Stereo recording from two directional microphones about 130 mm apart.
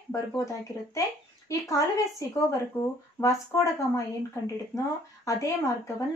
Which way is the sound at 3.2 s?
25° left (ahead or behind).